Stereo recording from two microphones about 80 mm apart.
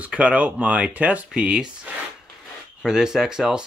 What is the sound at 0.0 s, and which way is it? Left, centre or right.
Speech, centre.